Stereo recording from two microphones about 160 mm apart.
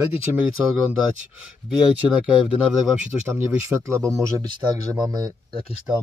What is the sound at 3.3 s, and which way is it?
Speech, 15° right (ahead or behind).